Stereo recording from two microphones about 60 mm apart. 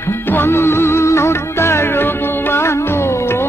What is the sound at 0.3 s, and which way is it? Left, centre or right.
Music, left.